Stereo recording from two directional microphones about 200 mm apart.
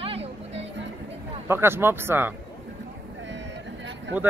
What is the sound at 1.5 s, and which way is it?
Speech, 10° right (ahead or behind).